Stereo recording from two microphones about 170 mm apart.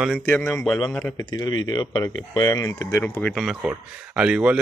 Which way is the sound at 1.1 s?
25° left (ahead or behind).